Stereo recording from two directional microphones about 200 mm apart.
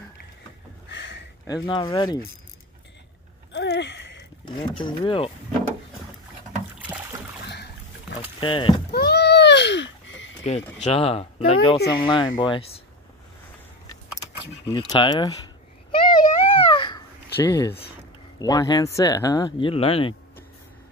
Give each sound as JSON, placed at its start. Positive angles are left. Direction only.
{"t": 0.8, "sound": "a sound", "side_deg": 65}
{"t": 1.5, "sound": "speech", "side_deg": 25}
{"t": 3.5, "sound": "a sound", "side_deg": 55}
{"t": 4.6, "sound": "speech", "side_deg": 25}
{"t": 6.8, "sound": "boat", "side_deg": -10}
{"t": 8.4, "sound": "speech", "side_deg": 25}
{"t": 8.9, "sound": "a sound", "side_deg": 55}
{"t": 10.4, "sound": "speech", "side_deg": 30}
{"t": 13.8, "sound": "keys jangling", "side_deg": 15}
{"t": 14.8, "sound": "speech", "side_deg": 25}
{"t": 15.9, "sound": "babbling", "side_deg": 25}
{"t": 18.4, "sound": "speech", "side_deg": 20}